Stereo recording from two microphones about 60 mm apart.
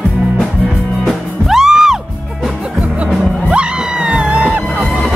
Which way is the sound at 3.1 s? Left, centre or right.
Centre.